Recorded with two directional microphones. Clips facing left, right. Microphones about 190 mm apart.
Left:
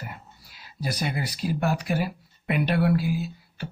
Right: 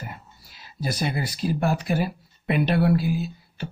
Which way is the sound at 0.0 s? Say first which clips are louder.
Right 1 dB; 30° right (ahead or behind).